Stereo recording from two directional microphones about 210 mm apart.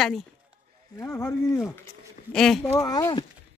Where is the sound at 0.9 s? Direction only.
10° left (ahead or behind).